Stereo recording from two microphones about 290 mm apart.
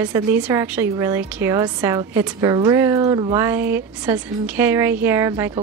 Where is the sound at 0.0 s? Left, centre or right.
Centre.